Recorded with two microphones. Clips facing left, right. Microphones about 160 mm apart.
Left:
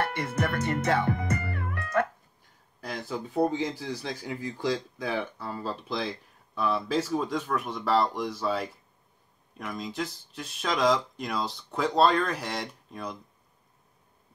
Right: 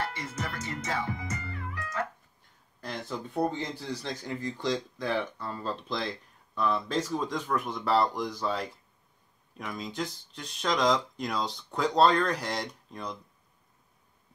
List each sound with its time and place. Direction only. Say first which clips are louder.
0.0 s music: left 6 dB; 60° left (ahead or behind)
2.8 s speech: left 2 dB; 5° left (ahead or behind)